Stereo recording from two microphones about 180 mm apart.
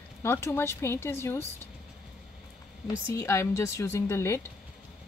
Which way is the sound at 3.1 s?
15° left (ahead or behind).